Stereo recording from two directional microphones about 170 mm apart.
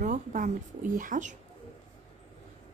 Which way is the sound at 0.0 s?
50° right (ahead or behind).